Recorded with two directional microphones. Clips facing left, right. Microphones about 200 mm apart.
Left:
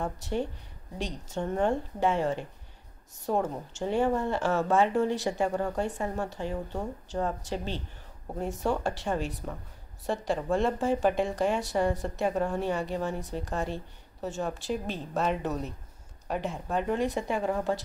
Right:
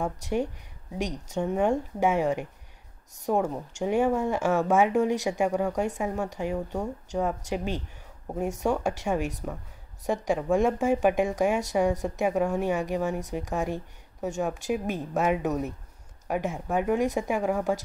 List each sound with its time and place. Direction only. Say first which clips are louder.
0.0 s speech: right 3 dB; 10° right (ahead or behind)